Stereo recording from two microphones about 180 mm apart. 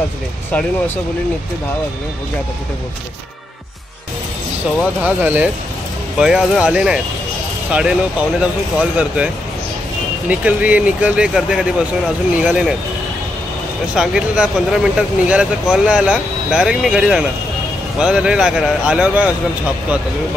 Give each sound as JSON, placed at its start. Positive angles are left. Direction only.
{"t": 5.0, "sound": "speech", "side_deg": -10}
{"t": 13.9, "sound": "speech", "side_deg": -5}